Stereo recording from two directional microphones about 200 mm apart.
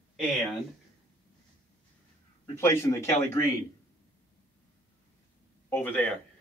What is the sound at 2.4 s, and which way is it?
Speech, 15° left (ahead or behind).